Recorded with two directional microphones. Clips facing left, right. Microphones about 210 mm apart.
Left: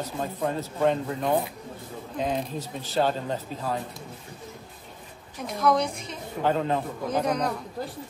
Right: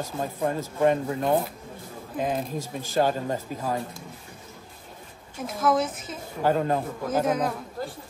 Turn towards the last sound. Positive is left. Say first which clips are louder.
# right 1 dB
turn(degrees=0)  # may be behind; listen again after turning